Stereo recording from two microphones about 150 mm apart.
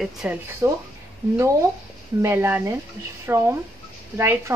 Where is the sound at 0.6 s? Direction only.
20° right (ahead or behind).